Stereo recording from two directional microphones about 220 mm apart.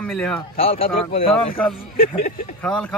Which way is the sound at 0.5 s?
25° left (ahead or behind).